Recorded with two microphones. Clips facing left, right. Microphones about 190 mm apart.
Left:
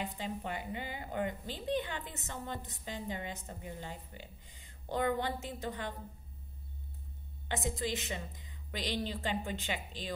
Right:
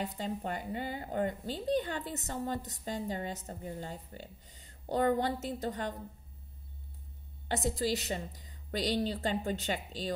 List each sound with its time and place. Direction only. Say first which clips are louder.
0.0 s speech: right 3 dB; 40° right (ahead or behind)
7.4 s speech: right 4 dB; 40° right (ahead or behind)